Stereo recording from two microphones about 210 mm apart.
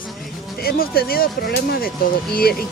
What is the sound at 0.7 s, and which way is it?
Speech, 45° left (ahead or behind).